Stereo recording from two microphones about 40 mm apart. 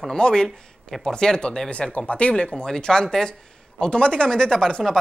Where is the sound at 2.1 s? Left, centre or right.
Left.